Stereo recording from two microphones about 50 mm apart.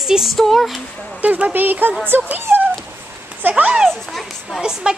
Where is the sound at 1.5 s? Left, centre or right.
Right.